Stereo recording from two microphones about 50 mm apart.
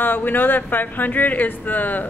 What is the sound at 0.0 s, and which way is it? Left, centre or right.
Speech, left.